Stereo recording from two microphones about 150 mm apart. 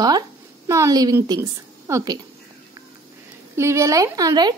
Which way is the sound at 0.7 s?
20° right (ahead or behind).